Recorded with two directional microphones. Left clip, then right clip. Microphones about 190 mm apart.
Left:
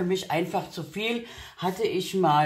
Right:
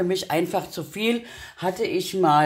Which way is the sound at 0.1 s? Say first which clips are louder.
Right 3 dB; 55° right (ahead or behind).